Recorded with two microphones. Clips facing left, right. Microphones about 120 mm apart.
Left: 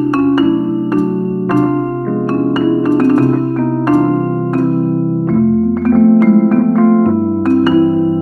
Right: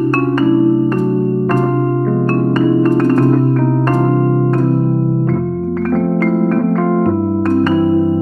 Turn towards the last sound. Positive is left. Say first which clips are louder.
# left 2 dB
turn(degrees=5)  # may be behind; listen again after turning